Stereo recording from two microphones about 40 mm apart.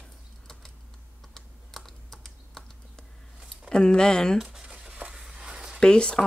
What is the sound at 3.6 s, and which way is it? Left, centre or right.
Speech, centre.